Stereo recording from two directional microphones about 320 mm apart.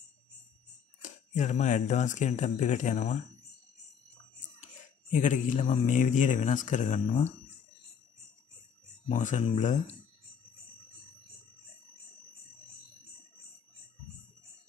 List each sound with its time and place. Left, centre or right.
1.3 s speech: left
5.1 s speech: left
9.1 s speech: left